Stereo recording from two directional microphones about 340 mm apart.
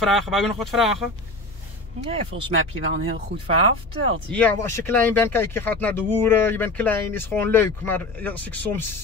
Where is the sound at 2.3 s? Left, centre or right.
Right.